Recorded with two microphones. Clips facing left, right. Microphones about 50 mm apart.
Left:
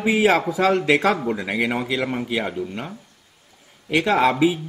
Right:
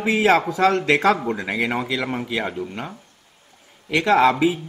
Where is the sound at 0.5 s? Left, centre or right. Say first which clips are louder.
Even; centre.